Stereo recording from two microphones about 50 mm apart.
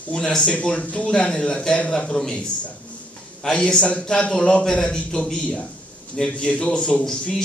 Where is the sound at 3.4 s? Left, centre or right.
Centre.